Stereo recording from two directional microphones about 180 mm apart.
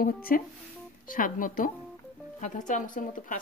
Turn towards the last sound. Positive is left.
turn(degrees=50)  # may be behind; listen again after turning